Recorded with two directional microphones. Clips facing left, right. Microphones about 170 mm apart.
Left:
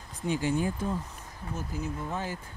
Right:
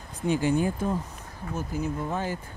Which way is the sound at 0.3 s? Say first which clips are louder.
Right 4 dB; 55° right (ahead or behind).